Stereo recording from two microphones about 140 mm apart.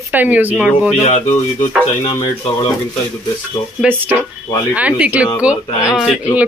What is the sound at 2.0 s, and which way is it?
Speech, 40° left (ahead or behind).